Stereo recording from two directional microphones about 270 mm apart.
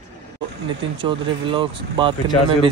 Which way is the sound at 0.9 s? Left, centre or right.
Centre.